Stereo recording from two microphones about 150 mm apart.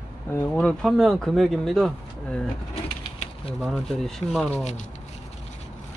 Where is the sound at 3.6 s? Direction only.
Centre (ahead or behind).